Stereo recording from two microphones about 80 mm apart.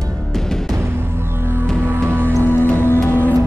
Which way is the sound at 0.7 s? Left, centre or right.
Right.